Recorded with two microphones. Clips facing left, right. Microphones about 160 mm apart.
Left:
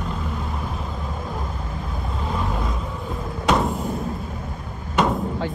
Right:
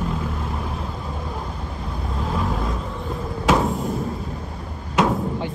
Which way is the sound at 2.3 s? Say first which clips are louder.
Right 1 dB; centre (ahead or behind).